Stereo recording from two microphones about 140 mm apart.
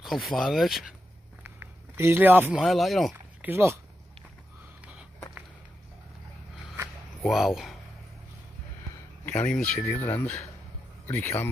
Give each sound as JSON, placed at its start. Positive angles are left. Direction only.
{"t": 0.0, "sound": "speech", "side_deg": 0}
{"t": 1.4, "sound": "a sound", "side_deg": -15}
{"t": 2.6, "sound": "speech", "side_deg": 0}
{"t": 3.4, "sound": "speech", "side_deg": -20}
{"t": 7.2, "sound": "speech", "side_deg": 0}
{"t": 9.2, "sound": "speech", "side_deg": 10}